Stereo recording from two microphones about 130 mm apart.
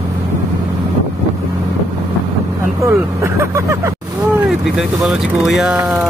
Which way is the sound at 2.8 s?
20° right (ahead or behind).